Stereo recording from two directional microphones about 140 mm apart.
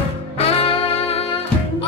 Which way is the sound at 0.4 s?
45° left (ahead or behind).